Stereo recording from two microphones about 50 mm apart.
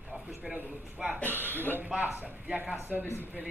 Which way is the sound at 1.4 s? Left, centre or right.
Left.